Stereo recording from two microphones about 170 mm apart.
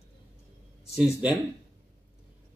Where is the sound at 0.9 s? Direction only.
5° right (ahead or behind).